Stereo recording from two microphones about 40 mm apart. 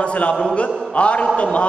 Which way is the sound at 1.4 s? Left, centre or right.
Left.